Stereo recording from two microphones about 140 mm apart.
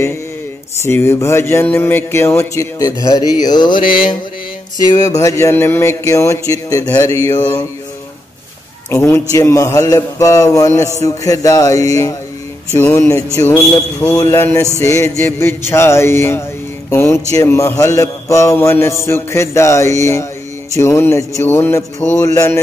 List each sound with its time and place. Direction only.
0.8 s a man's voice: 20° left (ahead or behind)
8.9 s a man's voice: 20° left (ahead or behind)
12.7 s music: 15° left (ahead or behind)
14.1 s a man's voice: 20° left (ahead or behind)
16.9 s music: 20° left (ahead or behind)
17.3 s a man's voice: 20° left (ahead or behind)